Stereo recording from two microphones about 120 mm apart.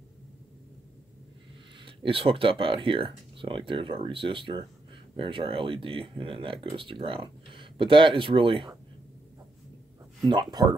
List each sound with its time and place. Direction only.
1.9 s speech: 45° right (ahead or behind)
10.2 s speech: 40° right (ahead or behind)